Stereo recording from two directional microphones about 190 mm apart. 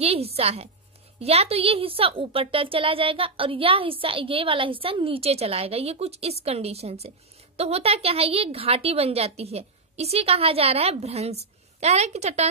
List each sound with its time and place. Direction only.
0.0 s a woman's voice: 30° right (ahead or behind)